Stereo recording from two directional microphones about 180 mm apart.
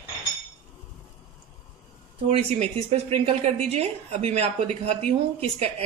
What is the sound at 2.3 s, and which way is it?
A woman's voice, 35° right (ahead or behind).